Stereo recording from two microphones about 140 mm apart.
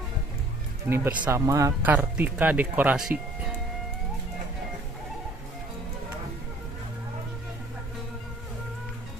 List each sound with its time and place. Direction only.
0.8 s speech: 15° right (ahead or behind)
1.9 s speech: 10° right (ahead or behind)